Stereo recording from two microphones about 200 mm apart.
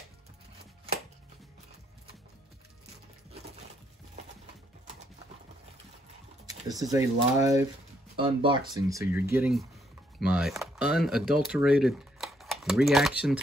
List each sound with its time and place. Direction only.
6.4 s speech: 20° right (ahead or behind)